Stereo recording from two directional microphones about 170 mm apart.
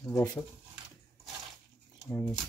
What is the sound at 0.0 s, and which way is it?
Speech, 15° left (ahead or behind).